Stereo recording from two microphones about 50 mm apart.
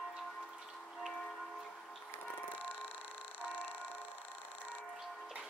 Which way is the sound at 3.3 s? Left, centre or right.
Left.